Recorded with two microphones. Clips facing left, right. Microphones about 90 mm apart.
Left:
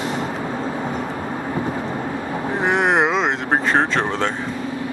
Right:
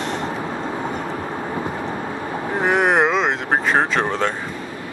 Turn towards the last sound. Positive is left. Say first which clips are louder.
# even
turn(degrees=0)  # may be behind; listen again after turning